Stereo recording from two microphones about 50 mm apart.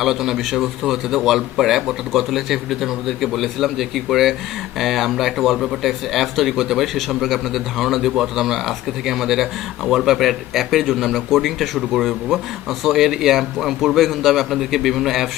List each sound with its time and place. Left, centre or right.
0.0 s a man's voice: centre